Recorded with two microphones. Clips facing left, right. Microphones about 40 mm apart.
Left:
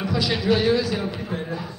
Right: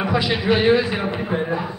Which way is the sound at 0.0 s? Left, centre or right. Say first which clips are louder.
Right 3 dB; right.